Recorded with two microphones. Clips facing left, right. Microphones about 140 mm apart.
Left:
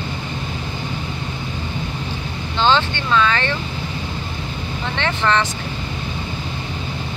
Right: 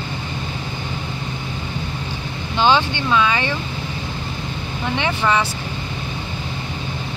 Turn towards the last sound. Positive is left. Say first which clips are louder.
# even
turn(degrees=-10)  # may be behind; listen again after turning